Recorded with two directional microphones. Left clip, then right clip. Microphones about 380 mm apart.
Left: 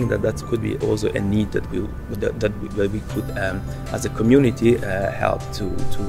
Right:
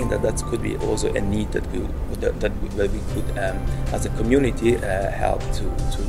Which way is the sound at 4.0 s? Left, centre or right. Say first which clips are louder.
Left 4 dB; left.